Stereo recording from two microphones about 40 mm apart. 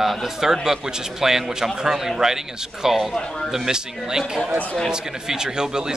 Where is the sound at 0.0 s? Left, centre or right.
Centre.